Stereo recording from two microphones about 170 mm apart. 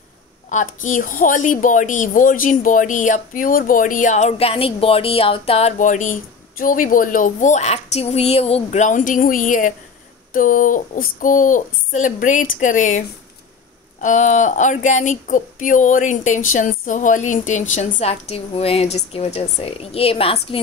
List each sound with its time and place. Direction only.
0.5 s a woman's voice: 50° left (ahead or behind)
14.0 s a woman's voice: 45° left (ahead or behind)